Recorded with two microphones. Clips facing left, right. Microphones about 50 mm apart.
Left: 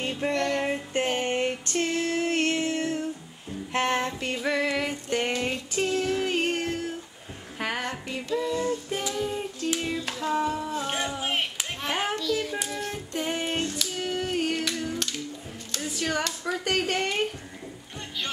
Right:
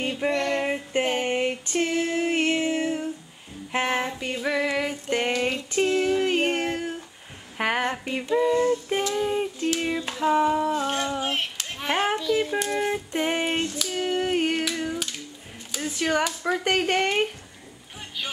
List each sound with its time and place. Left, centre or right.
0.0 s a sound: centre
3.7 s female singing: centre
5.1 s speech: right
5.8 s female singing: right
7.5 s a sound: right
8.1 s music: right
9.8 s a sound: centre
11.1 s child singing: centre
12.1 s music: right
13.4 s female singing: centre
13.7 s a sound: centre
15.7 s speech: centre
16.6 s music: right